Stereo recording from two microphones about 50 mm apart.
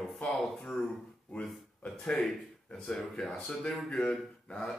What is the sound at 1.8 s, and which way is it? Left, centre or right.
Speech, centre.